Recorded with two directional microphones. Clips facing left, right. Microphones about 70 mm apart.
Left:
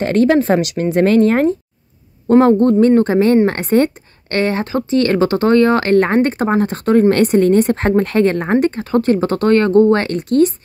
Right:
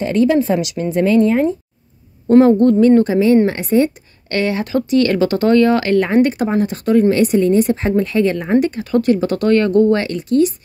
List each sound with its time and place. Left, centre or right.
0.0 s speech: left
0.7 s speech: left
2.6 s speech: left
4.3 s speech: left